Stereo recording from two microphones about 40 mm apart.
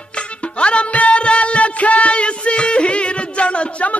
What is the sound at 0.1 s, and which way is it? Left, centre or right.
Music, left.